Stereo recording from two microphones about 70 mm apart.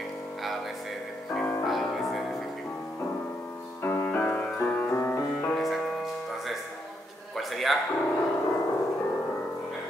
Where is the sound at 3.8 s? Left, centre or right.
Left.